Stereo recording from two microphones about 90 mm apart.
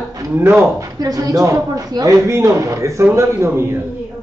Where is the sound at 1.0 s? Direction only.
35° right (ahead or behind).